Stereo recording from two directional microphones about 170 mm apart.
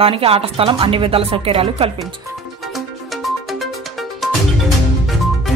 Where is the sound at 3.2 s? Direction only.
Centre (ahead or behind).